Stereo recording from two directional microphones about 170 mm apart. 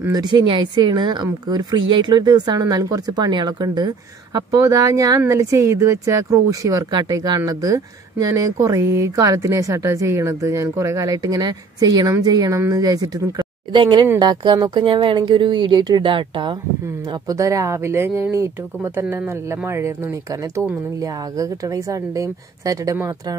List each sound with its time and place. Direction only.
0.0 s speech: 25° right (ahead or behind)